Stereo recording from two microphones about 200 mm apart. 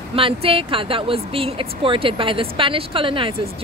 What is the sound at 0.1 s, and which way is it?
Speech, 30° right (ahead or behind).